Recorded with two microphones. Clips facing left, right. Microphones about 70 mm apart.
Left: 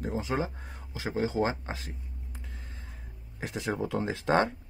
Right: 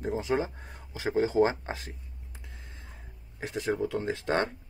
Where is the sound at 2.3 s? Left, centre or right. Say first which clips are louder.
Even; centre.